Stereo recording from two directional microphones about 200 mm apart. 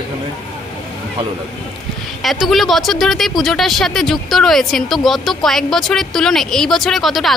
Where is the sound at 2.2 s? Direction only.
Centre (ahead or behind).